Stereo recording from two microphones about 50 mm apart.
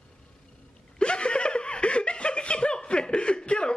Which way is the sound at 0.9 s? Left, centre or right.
Centre.